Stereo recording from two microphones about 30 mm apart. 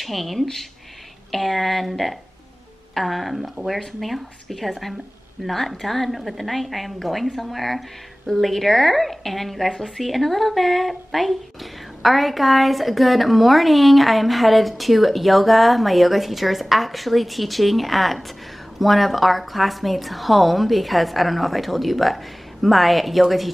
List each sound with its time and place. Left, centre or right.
0.0 s speech: centre